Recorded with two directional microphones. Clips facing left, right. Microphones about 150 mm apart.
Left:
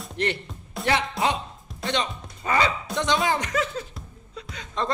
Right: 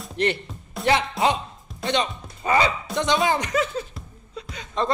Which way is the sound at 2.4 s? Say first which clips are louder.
Right 3 dB; 15° right (ahead or behind).